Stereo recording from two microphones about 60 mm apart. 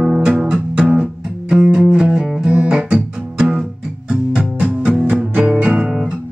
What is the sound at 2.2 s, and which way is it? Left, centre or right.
Music, centre.